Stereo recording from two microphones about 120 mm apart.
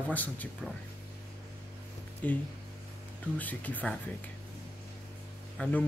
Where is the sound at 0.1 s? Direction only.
15° left (ahead or behind).